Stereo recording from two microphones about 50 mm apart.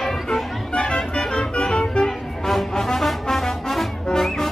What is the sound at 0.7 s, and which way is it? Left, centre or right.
Music, centre.